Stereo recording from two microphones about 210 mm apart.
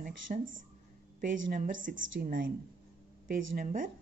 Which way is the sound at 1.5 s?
40° right (ahead or behind).